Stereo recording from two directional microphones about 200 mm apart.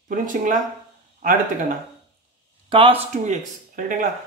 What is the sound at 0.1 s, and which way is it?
Speech, 40° right (ahead or behind).